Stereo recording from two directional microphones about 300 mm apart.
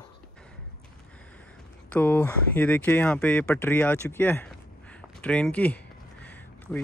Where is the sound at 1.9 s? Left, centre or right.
Centre.